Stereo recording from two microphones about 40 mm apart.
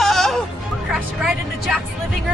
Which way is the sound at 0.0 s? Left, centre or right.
Centre.